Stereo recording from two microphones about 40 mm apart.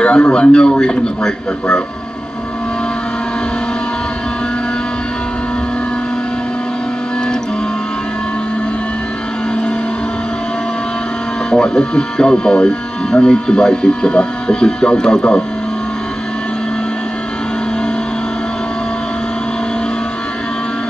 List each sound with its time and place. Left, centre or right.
0.0 s speech: left
11.5 s speech: left